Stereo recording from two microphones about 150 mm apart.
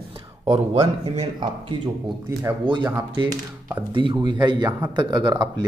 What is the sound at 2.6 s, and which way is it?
Speech, 30° right (ahead or behind).